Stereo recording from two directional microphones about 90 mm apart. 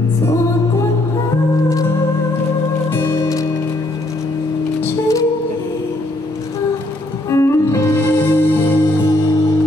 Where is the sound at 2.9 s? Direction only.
35° left (ahead or behind).